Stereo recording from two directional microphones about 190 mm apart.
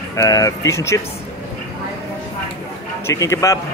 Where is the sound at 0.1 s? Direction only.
20° left (ahead or behind).